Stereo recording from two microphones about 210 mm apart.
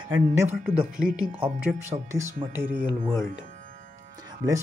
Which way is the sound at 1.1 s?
5° right (ahead or behind).